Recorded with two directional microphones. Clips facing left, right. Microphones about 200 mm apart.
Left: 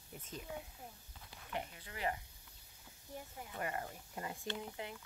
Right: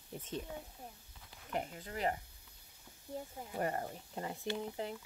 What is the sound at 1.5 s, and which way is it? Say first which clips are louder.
Speech: right 5 dB; 40° right (ahead or behind).